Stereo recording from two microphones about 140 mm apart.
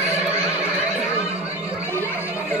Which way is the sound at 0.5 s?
10° right (ahead or behind).